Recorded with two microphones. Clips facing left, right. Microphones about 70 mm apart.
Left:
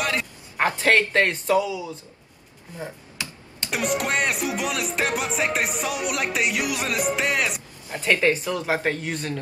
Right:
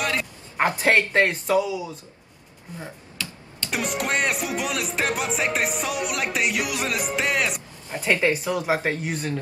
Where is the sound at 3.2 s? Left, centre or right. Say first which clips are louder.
Even; left.